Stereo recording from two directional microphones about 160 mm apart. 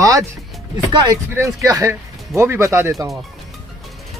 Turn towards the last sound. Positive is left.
turn(degrees=-15)  # may be behind; listen again after turning